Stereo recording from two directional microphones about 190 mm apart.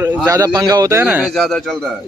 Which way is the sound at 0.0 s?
10° right (ahead or behind).